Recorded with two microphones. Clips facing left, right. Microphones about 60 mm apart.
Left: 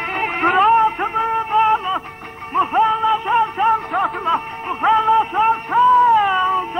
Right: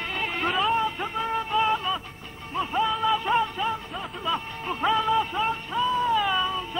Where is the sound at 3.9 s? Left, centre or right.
Left.